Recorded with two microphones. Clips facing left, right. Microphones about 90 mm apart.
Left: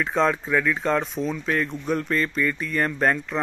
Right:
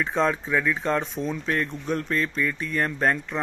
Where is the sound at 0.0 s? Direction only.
Centre (ahead or behind).